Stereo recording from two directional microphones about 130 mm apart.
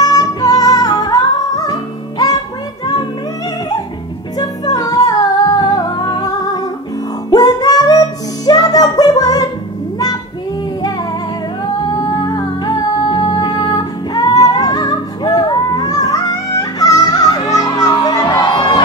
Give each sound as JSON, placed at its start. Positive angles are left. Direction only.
{"t": 0.0, "sound": "music", "side_deg": 30}
{"t": 4.4, "sound": "music", "side_deg": 30}
{"t": 11.8, "sound": "music", "side_deg": 30}